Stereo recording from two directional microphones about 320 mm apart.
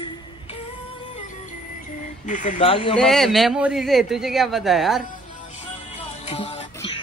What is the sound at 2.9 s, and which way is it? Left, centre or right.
A man's voice, centre.